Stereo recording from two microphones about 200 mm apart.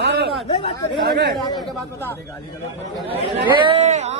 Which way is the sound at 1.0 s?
55° right (ahead or behind).